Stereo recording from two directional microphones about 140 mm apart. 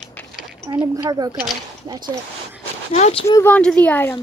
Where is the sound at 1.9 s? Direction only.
30° right (ahead or behind).